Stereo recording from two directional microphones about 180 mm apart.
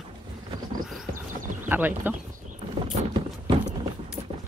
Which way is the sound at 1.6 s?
10° right (ahead or behind).